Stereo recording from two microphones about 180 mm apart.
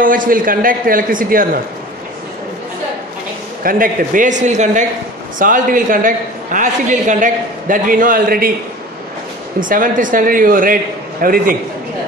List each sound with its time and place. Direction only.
0.0 s a man's voice: 50° right (ahead or behind)
3.6 s a man's voice: 50° right (ahead or behind)
9.6 s a man's voice: 50° right (ahead or behind)